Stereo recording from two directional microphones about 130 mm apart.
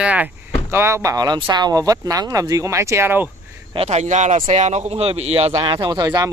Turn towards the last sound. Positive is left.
turn(degrees=-30)  # may be behind; listen again after turning